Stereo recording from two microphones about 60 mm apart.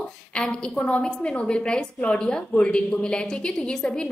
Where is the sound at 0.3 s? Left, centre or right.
Centre.